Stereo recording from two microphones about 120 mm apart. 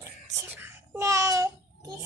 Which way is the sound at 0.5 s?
20° right (ahead or behind).